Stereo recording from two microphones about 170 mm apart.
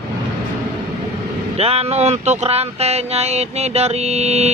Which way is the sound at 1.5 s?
35° right (ahead or behind).